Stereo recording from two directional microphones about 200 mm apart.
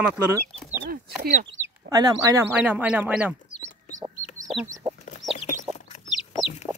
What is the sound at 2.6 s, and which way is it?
Speech, 5° right (ahead or behind).